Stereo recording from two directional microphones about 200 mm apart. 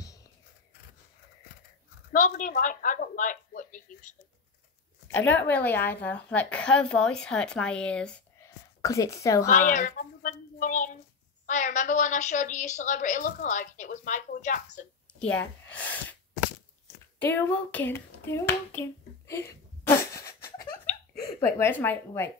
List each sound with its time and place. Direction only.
2.1 s a woman's voice: 40° left (ahead or behind)
5.0 s speech: 10° left (ahead or behind)
8.8 s speech: 15° left (ahead or behind)
9.5 s a sound: 40° left (ahead or behind)
11.4 s a woman's voice: 40° left (ahead or behind)
15.7 s gasp: 10° left (ahead or behind)
17.2 s a sound: 10° left (ahead or behind)
20.8 s a sound: 50° left (ahead or behind)
21.4 s speech: 10° left (ahead or behind)